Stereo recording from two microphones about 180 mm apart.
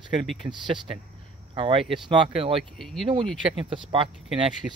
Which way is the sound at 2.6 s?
Centre (ahead or behind).